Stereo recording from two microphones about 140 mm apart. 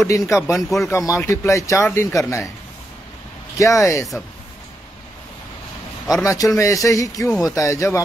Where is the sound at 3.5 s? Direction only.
25° left (ahead or behind).